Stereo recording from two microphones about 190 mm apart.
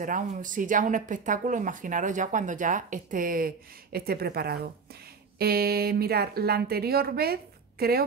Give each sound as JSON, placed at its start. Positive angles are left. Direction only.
{"t": 0.0, "sound": "a woman's voice", "side_deg": -45}